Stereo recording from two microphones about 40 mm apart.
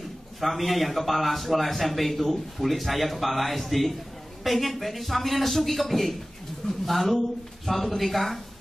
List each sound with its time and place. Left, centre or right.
0.4 s a man's voice: centre